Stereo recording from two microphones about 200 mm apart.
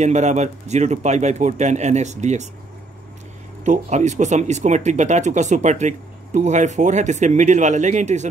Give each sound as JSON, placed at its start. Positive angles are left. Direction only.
{"t": 0.0, "sound": "speech", "side_deg": -35}
{"t": 3.6, "sound": "speech", "side_deg": -35}